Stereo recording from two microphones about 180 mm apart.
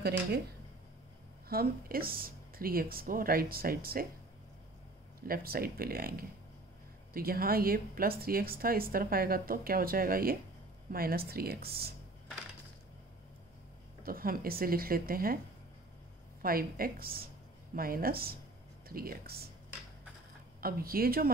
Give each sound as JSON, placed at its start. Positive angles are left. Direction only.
{"t": 1.5, "sound": "a woman's voice", "side_deg": -55}
{"t": 5.2, "sound": "a woman's voice", "side_deg": -55}
{"t": 14.0, "sound": "a woman's voice", "side_deg": -55}
{"t": 16.4, "sound": "a woman's voice", "side_deg": -55}
{"t": 20.6, "sound": "a woman's voice", "side_deg": -55}